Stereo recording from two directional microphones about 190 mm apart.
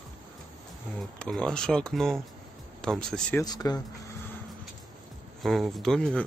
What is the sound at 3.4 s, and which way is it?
Speech, 20° left (ahead or behind).